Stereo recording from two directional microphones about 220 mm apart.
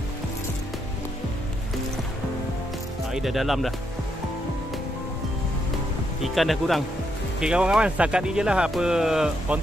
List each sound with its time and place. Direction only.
3.1 s speech: centre (ahead or behind)
6.2 s speech: centre (ahead or behind)